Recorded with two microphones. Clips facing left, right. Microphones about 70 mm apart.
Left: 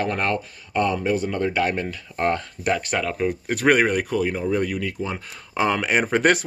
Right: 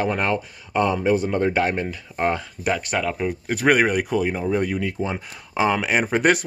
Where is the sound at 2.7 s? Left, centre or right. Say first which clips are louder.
Even; centre; by 5.1 s right.